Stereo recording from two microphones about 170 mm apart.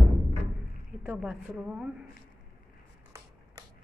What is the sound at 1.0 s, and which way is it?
A woman's voice, 5° right (ahead or behind).